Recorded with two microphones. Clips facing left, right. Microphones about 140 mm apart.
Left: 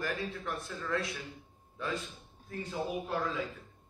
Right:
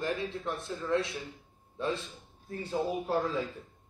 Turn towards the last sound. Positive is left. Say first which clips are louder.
# right 4 dB
turn(degrees=-35)  # may be behind; listen again after turning